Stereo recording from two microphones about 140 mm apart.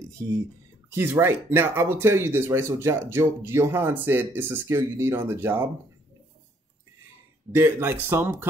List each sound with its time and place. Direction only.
0.9 s speech: 15° right (ahead or behind)
7.5 s speech: 15° right (ahead or behind)